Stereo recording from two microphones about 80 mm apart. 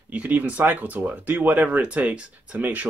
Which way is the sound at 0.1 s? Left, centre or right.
Centre.